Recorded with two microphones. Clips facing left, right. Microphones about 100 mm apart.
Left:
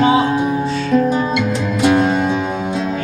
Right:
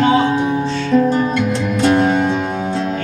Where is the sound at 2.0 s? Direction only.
20° right (ahead or behind).